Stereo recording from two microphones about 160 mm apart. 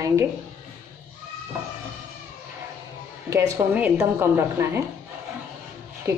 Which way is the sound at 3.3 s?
20° right (ahead or behind).